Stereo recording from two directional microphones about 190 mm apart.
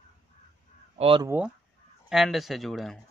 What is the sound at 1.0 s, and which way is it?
Speech, 30° right (ahead or behind).